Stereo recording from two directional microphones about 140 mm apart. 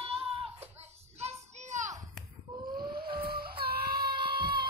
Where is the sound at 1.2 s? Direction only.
60° right (ahead or behind).